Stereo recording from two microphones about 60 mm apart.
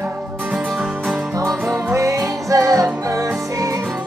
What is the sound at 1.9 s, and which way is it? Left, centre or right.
Music, right.